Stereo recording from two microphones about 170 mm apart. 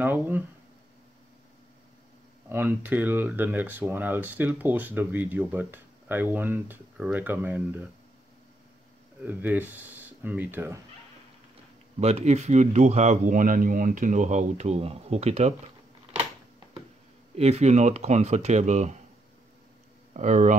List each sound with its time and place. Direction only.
0.0 s speech: 10° right (ahead or behind)
2.5 s speech: 10° right (ahead or behind)
9.2 s speech: 10° right (ahead or behind)
12.0 s a man's voice: 40° right (ahead or behind)
17.4 s speech: 40° right (ahead or behind)
20.2 s a man's voice: 45° right (ahead or behind)